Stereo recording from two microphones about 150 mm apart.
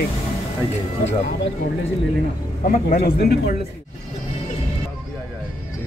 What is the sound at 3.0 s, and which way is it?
Speech, 90° left.